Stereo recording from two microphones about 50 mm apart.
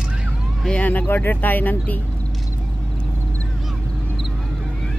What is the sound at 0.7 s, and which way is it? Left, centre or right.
Speech, left.